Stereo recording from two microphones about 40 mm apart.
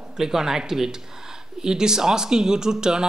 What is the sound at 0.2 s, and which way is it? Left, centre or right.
A man's voice, centre.